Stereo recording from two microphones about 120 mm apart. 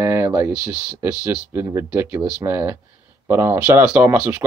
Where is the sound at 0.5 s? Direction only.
15° right (ahead or behind).